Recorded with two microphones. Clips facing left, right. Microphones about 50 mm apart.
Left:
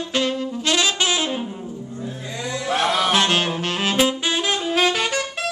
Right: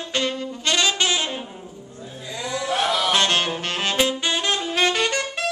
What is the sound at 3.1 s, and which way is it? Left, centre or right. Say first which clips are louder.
Saxophone: left 1 dB; centre.